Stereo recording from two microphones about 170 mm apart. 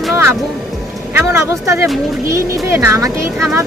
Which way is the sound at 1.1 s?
15° right (ahead or behind).